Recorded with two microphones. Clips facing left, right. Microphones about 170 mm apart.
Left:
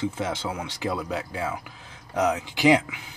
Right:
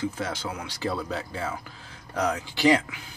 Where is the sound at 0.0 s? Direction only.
25° left (ahead or behind).